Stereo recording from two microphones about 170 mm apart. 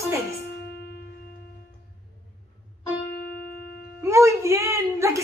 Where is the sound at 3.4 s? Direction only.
65° left (ahead or behind).